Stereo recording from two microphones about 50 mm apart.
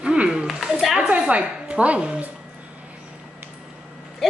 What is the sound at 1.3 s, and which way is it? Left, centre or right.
A woman's voice, right.